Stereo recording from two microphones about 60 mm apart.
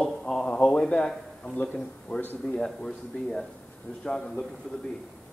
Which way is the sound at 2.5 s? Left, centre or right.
Centre.